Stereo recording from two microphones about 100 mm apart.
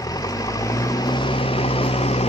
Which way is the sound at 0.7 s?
45° left (ahead or behind).